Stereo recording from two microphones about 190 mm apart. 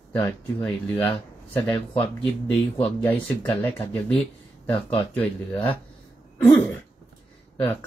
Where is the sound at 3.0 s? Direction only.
10° left (ahead or behind).